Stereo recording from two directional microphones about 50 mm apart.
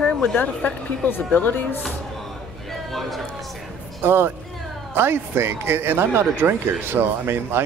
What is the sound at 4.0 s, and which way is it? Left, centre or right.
Speech, right.